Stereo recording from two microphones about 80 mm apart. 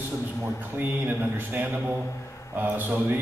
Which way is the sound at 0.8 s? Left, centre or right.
Right.